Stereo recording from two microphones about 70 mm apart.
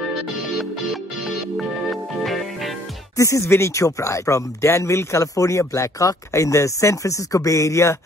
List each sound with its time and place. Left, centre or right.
1.6 s music: centre
3.2 s speech: left